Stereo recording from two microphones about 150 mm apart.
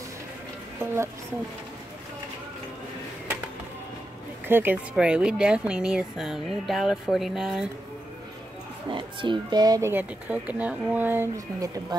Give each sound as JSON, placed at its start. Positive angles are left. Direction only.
{"t": 0.7, "sound": "speech", "side_deg": -15}
{"t": 4.5, "sound": "speech", "side_deg": -15}
{"t": 8.9, "sound": "speech", "side_deg": -35}